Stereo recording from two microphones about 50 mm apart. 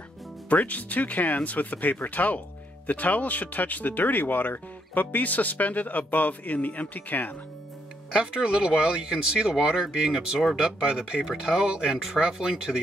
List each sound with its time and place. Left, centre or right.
0.5 s speech: left
8.1 s speech: centre